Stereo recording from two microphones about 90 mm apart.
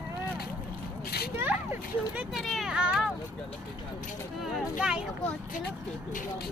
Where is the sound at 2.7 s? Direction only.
10° right (ahead or behind).